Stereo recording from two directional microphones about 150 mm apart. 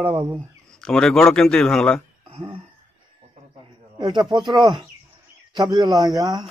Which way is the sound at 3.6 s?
30° right (ahead or behind).